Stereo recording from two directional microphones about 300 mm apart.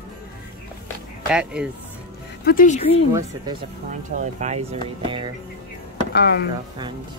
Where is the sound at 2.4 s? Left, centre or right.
Left.